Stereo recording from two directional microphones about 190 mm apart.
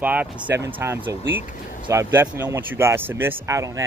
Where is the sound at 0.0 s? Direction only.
10° right (ahead or behind).